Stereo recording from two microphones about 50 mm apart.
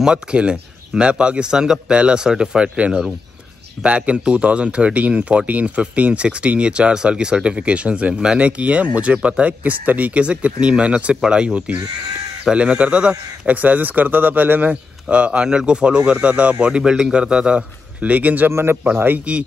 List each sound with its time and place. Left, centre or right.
0.0 s a man's voice: centre; by 14.7 s right
14.7 s speech: right
18.0 s speech: right
18.5 s speech: right
19.3 s speech: right